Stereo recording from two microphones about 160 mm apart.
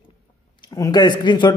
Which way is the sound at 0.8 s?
25° left (ahead or behind).